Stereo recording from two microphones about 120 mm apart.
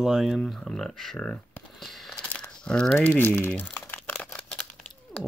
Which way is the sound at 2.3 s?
10° left (ahead or behind).